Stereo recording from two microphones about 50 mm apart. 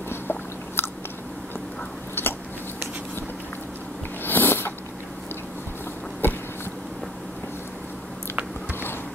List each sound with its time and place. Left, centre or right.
0.1 s chewing: left
2.2 s biting: left
4.2 s sniff: left
6.2 s a sound: left